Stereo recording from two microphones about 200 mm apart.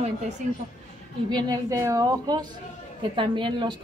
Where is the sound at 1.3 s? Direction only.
15° right (ahead or behind).